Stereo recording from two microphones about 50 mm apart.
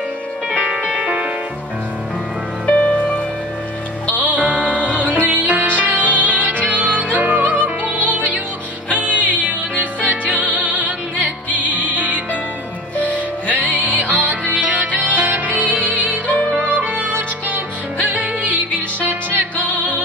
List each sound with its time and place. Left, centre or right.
0.6 s music: right
2.6 s music: left
4.4 s music: right
8.9 s music: right
13.7 s music: right